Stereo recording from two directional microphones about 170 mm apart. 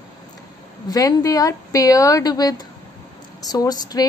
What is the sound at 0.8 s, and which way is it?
A woman's voice, 20° left (ahead or behind).